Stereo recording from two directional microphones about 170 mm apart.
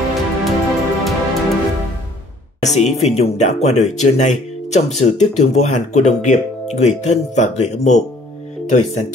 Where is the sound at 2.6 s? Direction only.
40° left (ahead or behind).